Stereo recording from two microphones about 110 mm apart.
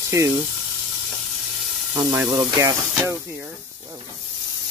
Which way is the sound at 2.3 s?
30° right (ahead or behind).